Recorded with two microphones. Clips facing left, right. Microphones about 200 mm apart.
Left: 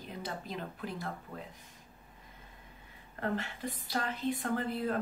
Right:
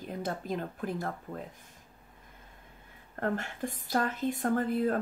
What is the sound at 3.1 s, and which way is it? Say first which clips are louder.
A woman's voice: right 3 dB; 50° right (ahead or behind).